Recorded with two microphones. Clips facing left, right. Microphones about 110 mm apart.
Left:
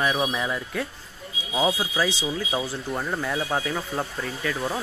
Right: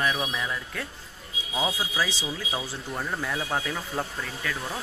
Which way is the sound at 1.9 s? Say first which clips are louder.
Left 4 dB; centre (ahead or behind).